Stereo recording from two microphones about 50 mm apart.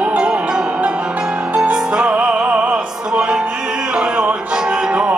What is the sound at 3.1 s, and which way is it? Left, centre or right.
Music, centre.